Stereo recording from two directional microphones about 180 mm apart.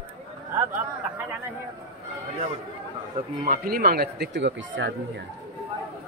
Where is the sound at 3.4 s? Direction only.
55° right (ahead or behind); by 4.9 s 85° right.